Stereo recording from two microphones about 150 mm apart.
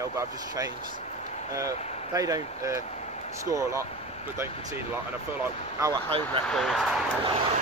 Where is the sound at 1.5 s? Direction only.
20° right (ahead or behind).